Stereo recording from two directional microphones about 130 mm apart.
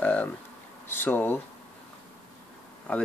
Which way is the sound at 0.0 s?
10° left (ahead or behind).